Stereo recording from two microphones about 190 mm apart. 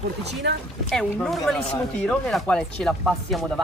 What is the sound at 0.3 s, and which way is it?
Speech, 60° right (ahead or behind).